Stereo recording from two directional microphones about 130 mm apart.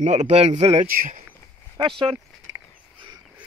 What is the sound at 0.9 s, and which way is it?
Speech, 90° right.